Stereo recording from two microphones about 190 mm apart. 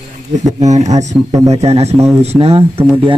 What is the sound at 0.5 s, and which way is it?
Speech, 35° right (ahead or behind).